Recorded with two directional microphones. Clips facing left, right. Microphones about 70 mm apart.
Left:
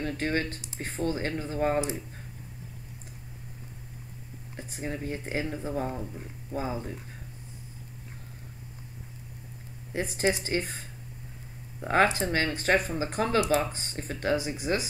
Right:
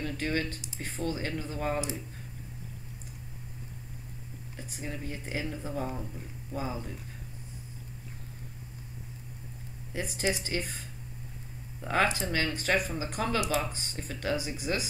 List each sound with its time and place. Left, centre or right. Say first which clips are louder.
0.0 s speech: left 2 dB; left
4.6 s speech: left 4 dB; left
9.9 s speech: left 4 dB; left
11.9 s speech: left 4 dB; left